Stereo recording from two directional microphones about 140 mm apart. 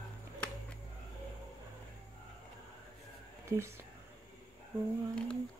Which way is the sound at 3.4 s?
20° right (ahead or behind).